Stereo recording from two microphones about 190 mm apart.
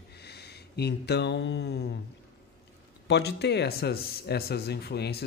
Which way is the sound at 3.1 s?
60° left (ahead or behind).